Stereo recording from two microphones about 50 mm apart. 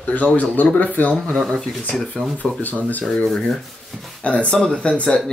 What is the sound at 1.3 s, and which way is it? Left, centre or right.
Speech, centre.